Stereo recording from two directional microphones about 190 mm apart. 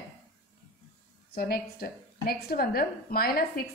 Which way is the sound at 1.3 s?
50° left (ahead or behind).